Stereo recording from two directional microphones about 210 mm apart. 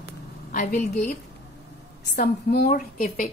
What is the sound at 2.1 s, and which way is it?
A woman's voice, 50° left (ahead or behind).